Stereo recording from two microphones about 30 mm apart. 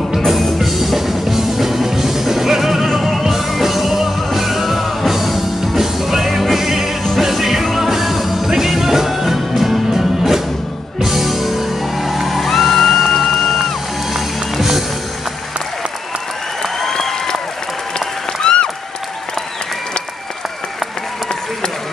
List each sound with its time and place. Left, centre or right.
0.1 s music: centre
14.5 s music: centre
17.0 s applause: centre
17.9 s applause: left